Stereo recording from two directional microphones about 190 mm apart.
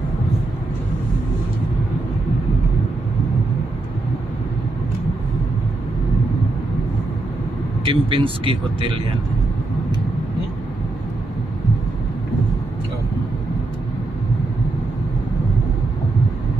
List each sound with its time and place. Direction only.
7.8 s speech: 25° right (ahead or behind)